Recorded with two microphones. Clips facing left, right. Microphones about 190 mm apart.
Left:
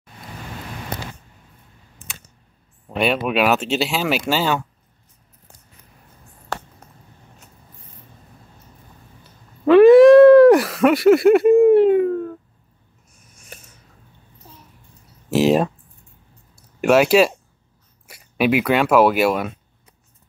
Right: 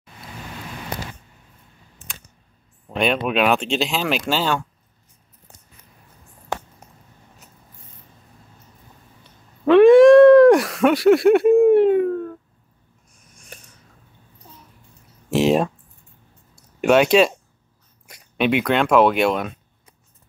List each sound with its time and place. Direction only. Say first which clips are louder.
2.9 s speech: left 1 dB; 5° left (ahead or behind)
6.5 s a sound: right 2 dB; 15° right (ahead or behind)
9.7 s a sound: left 1 dB; centre (ahead or behind)
15.2 s speech: left 1 dB; centre (ahead or behind)
16.5 s clicking: left 1 dB; 5° left (ahead or behind)
18.0 s speech: left 2 dB; 5° left (ahead or behind)